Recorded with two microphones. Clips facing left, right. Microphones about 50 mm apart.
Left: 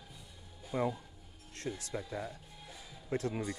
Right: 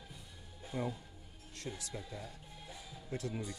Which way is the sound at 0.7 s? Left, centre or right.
Left.